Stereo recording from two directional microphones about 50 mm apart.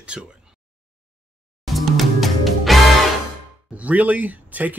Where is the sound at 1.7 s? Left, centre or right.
Centre.